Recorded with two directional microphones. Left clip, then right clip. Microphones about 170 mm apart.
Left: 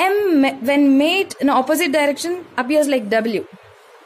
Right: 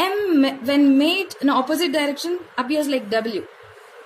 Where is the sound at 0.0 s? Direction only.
45° left (ahead or behind).